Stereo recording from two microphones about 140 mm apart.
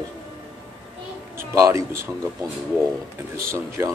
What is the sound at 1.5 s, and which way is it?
Speech, 20° right (ahead or behind).